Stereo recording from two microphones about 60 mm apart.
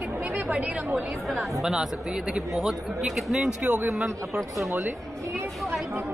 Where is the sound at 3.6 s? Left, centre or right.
Right.